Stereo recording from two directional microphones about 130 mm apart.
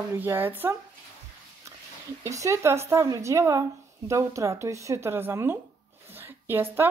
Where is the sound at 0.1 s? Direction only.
15° right (ahead or behind).